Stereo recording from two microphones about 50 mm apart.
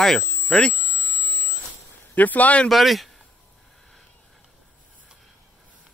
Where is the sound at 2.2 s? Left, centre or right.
Left.